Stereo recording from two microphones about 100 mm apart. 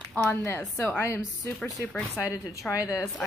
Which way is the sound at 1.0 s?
25° left (ahead or behind).